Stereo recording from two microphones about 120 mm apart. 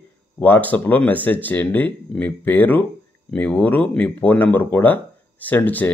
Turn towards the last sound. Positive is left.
turn(degrees=15)  # may be behind; listen again after turning